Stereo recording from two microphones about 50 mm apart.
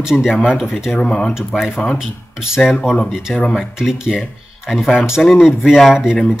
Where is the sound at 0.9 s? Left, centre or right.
Centre.